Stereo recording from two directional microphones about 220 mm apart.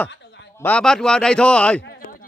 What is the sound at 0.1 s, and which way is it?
Chuckle, 50° left (ahead or behind).